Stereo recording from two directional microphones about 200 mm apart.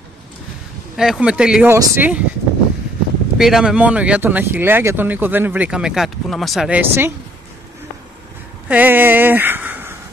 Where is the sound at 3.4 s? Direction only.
Centre (ahead or behind).